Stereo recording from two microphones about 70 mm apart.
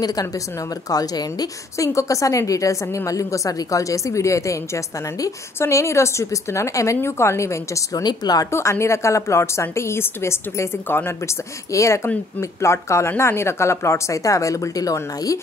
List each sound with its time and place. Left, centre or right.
0.0 s a woman's voice: left
1.9 s a woman's voice: left
8.0 s speech: left
8.5 s a woman's voice: left